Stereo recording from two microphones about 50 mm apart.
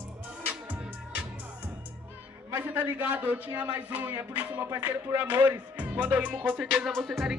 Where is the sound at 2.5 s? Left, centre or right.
Right.